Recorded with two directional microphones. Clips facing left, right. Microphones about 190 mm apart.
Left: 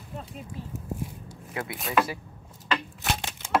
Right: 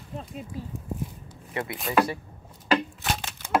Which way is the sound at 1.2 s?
5° left (ahead or behind).